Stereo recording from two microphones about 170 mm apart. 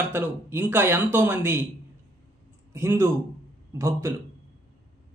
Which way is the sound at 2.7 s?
15° right (ahead or behind).